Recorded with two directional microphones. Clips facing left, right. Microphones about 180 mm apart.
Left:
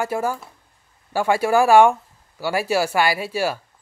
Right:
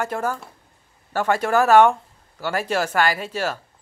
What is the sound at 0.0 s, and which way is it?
Speech, 10° left (ahead or behind).